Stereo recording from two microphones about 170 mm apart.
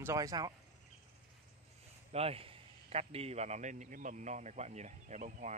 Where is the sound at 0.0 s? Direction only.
20° right (ahead or behind).